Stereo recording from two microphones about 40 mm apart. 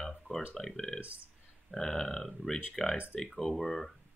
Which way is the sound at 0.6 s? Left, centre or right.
Centre.